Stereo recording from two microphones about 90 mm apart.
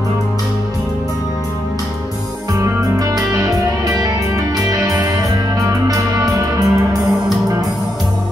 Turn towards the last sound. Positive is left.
turn(degrees=-40)  # may be behind; listen again after turning